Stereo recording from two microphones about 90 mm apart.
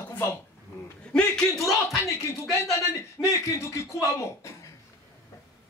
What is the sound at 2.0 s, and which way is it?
Speech, 30° left (ahead or behind).